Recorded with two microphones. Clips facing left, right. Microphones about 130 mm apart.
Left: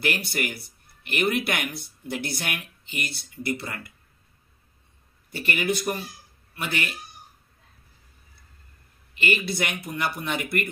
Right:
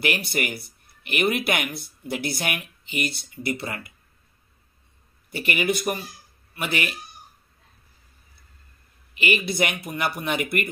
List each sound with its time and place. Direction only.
0.0 s speech: 15° right (ahead or behind)
5.3 s speech: 15° right (ahead or behind)
9.1 s speech: 15° right (ahead or behind)